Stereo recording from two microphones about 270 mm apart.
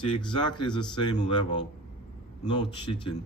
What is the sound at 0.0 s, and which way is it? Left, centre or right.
Speech, centre.